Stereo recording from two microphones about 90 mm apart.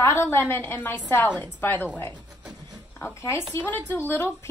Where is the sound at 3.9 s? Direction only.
25° left (ahead or behind).